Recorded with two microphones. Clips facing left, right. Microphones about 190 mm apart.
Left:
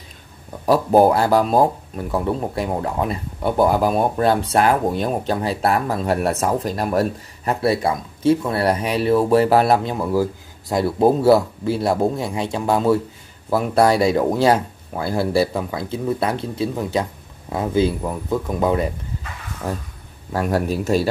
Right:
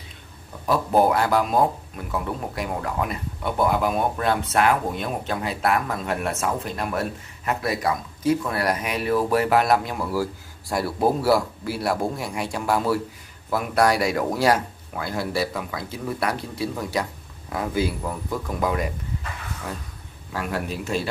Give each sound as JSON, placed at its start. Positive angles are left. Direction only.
{"t": 0.7, "sound": "speech", "side_deg": 30}
{"t": 19.6, "sound": "speech", "side_deg": 40}